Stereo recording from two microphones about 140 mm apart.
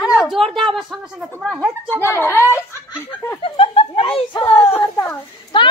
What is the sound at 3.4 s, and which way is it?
Speech, 40° left (ahead or behind).